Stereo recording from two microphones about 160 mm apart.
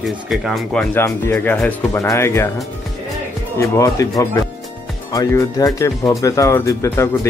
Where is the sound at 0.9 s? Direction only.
15° left (ahead or behind).